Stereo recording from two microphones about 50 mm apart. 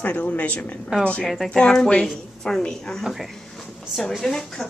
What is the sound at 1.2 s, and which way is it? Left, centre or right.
Speech, centre.